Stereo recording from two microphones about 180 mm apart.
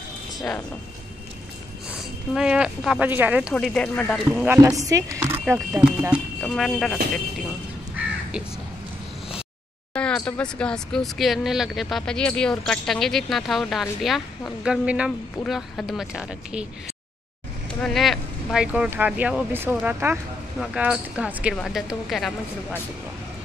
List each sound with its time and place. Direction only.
0.4 s speech: 15° left (ahead or behind)
1.9 s speech: 5° right (ahead or behind)
3.5 s speech: 5° left (ahead or behind)
4.4 s speech: 15° right (ahead or behind)
5.5 s speech: 5° right (ahead or behind)
8.0 s crow: 10° right (ahead or behind)
9.9 s speech: 5° left (ahead or behind)
17.6 s speech: centre (ahead or behind)